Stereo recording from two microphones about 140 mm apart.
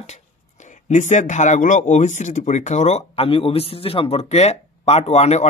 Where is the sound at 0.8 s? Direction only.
60° left (ahead or behind).